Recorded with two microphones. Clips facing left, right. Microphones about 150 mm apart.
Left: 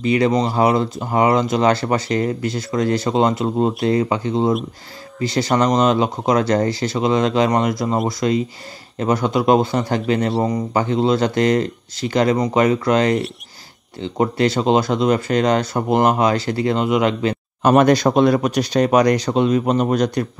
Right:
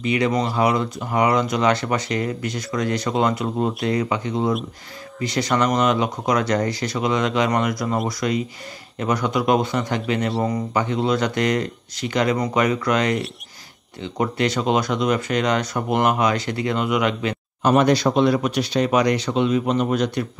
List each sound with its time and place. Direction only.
0.0 s speech: 35° left (ahead or behind)
17.6 s speech: 50° left (ahead or behind)